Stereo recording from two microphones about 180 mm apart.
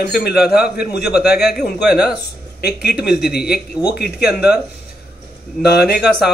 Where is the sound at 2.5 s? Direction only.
60° left (ahead or behind).